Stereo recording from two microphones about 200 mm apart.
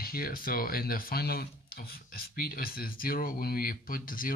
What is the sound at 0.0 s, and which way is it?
Speech, 45° left (ahead or behind).